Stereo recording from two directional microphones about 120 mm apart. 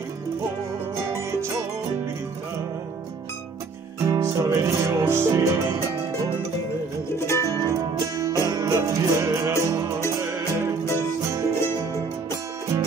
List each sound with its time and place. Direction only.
1.1 s music: 25° right (ahead or behind)
4.0 s music: 30° right (ahead or behind)
7.1 s music: 20° left (ahead or behind)
7.6 s music: 30° right (ahead or behind)